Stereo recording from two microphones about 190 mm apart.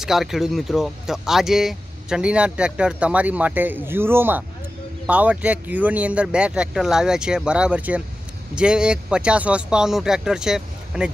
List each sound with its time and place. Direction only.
0.0 s speech: centre (ahead or behind)